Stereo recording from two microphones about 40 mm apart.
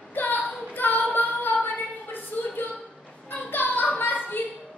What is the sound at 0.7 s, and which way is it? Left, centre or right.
Female singing, left.